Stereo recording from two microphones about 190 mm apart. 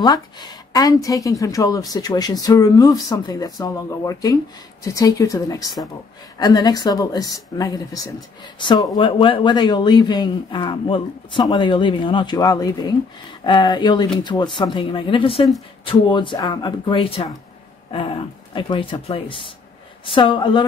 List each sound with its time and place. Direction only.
0.0 s speech: 20° left (ahead or behind)